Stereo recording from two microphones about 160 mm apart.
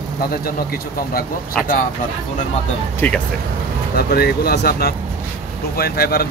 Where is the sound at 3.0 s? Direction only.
10° left (ahead or behind).